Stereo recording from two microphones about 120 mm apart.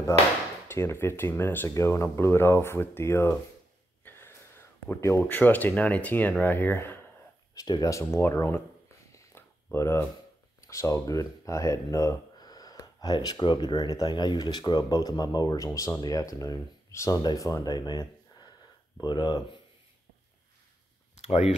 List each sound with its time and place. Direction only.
0.7 s speech: 20° left (ahead or behind)
4.8 s speech: 20° left (ahead or behind)
7.5 s speech: 35° left (ahead or behind)
9.1 s a sound: 20° left (ahead or behind)
10.6 s speech: 25° left (ahead or behind)
21.2 s speech: 60° left (ahead or behind)